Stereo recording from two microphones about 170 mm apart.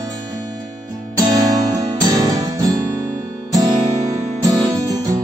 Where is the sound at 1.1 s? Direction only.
25° right (ahead or behind).